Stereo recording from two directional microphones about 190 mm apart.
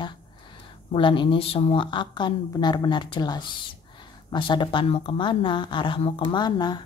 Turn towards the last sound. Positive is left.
turn(degrees=20)  # may be behind; listen again after turning